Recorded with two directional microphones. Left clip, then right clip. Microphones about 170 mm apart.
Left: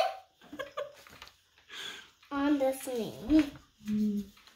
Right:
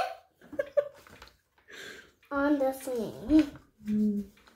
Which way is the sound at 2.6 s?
5° right (ahead or behind).